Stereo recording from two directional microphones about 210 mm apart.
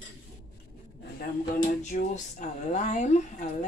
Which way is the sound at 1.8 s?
35° left (ahead or behind).